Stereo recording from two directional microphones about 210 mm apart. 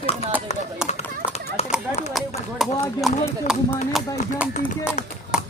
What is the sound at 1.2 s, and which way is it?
Clip-clop, 30° left (ahead or behind).